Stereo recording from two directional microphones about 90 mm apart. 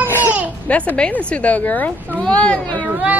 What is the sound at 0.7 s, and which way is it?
A woman's voice, 15° left (ahead or behind).